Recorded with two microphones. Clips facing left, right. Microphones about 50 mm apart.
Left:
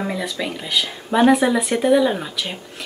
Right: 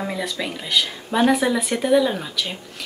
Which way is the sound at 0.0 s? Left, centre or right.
Centre.